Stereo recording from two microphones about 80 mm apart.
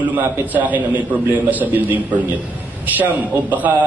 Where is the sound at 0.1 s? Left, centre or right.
Right.